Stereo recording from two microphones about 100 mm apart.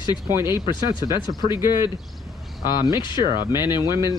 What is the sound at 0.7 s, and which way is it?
Speech, 50° left (ahead or behind).